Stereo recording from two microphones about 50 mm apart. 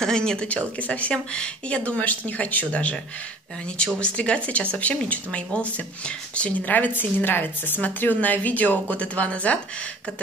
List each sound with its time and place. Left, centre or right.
0.0 s speech: centre
0.5 s speech: left
1.9 s speech: left